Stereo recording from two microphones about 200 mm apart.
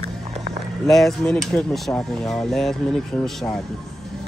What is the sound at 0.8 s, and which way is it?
Speech, centre (ahead or behind).